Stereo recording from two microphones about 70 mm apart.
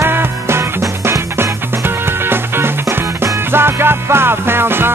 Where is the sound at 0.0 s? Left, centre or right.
Right.